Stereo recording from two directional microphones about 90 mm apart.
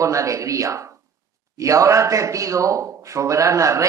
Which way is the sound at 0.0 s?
35° right (ahead or behind).